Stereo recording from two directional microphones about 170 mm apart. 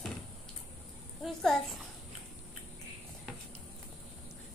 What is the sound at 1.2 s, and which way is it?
Speech, centre (ahead or behind).